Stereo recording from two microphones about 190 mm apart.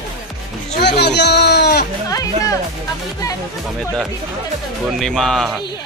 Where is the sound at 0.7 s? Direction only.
60° left (ahead or behind).